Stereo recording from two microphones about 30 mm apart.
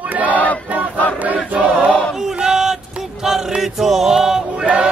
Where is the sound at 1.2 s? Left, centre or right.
Right.